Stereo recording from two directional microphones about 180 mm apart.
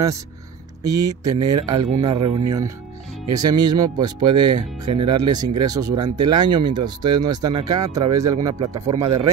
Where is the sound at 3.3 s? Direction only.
20° right (ahead or behind).